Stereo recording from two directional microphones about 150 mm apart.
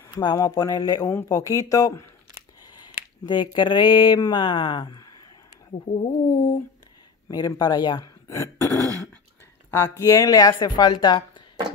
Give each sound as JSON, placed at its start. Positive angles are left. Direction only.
{"t": 0.2, "sound": "speech", "side_deg": 25}
{"t": 3.3, "sound": "speech", "side_deg": 35}
{"t": 5.9, "sound": "speech", "side_deg": 45}
{"t": 6.2, "sound": "speech", "side_deg": 25}
{"t": 8.7, "sound": "throat clearing", "side_deg": -25}
{"t": 9.7, "sound": "speech", "side_deg": 20}